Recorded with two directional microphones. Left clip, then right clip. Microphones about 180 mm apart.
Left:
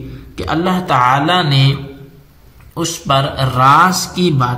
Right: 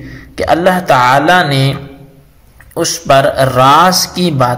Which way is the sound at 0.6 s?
35° right (ahead or behind).